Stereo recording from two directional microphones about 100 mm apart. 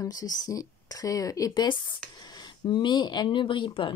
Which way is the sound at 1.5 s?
50° left (ahead or behind).